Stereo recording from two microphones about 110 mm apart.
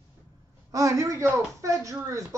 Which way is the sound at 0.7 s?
30° right (ahead or behind).